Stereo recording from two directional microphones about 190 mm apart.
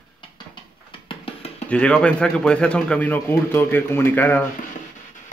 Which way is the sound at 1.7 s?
5° left (ahead or behind).